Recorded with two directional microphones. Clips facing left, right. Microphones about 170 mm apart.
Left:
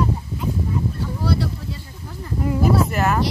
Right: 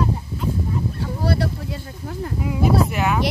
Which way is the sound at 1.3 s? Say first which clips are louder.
Right 1 dB; 55° right (ahead or behind).